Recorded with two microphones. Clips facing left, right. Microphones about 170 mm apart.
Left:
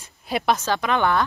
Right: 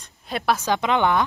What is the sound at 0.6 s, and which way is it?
Speech, 20° right (ahead or behind).